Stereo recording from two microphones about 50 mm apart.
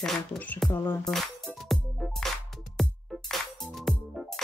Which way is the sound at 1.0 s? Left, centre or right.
Centre.